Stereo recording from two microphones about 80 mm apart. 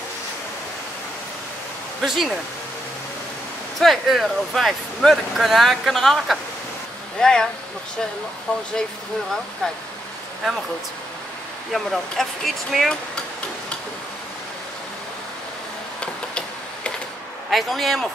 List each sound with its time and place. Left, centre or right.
2.0 s speech: centre
3.8 s speech: centre
8.5 s speech: centre
11.7 s speech: centre
16.0 s a sound: centre
17.5 s speech: centre